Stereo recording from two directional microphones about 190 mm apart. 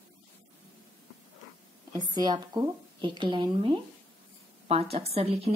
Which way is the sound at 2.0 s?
25° right (ahead or behind).